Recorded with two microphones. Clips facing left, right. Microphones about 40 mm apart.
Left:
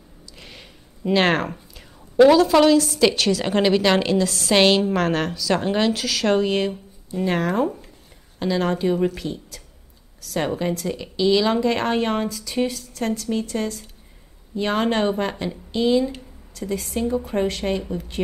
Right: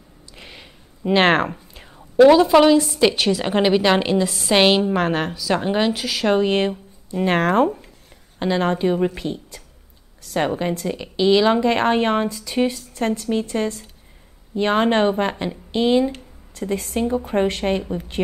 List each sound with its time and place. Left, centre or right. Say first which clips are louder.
0.4 s a sound: right 2 dB; centre
1.1 s speech: right 3 dB; right
2.2 s a woman's voice: right 2 dB; centre
6.4 s speech: right 2 dB; right
7.2 s speech: right 4 dB; right
8.4 s speech: right 2 dB; right